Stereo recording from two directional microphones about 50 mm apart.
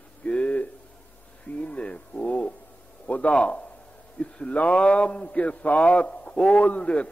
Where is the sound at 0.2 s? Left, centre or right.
Left.